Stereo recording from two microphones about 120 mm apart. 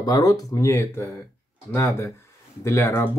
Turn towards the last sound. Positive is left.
turn(degrees=20)  # may be behind; listen again after turning